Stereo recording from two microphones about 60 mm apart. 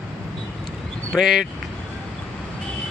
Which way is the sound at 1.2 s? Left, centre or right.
Centre.